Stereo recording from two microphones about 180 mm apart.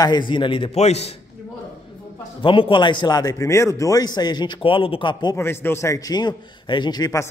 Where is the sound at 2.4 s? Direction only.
30° left (ahead or behind).